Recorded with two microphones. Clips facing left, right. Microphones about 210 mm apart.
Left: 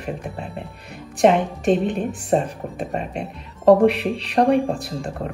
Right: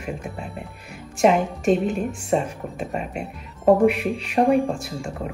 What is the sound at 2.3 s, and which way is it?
Speech, 40° left (ahead or behind).